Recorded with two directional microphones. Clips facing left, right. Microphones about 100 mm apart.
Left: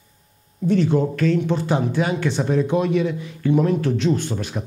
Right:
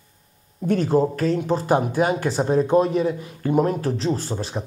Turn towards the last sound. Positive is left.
turn(degrees=-30)  # may be behind; listen again after turning